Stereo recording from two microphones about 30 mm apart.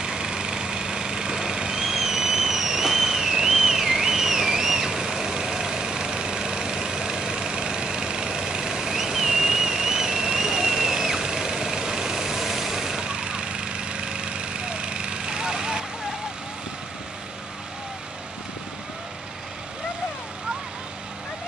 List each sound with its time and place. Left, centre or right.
0.0 s vehicle: right
2.0 s a sound: centre
13.0 s vehicle: right